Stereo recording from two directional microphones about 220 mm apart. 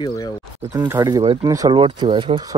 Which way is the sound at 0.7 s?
15° right (ahead or behind).